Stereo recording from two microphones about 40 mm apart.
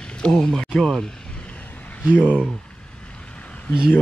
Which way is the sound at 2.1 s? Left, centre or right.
Right.